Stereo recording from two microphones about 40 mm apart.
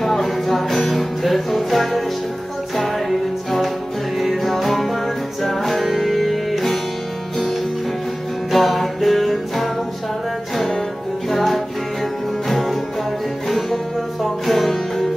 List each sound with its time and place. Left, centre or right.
0.0 s music: centre
3.1 s music: centre
8.5 s music: centre
11.2 s music: centre